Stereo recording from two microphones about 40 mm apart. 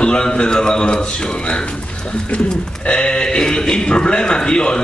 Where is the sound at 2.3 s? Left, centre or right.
Left.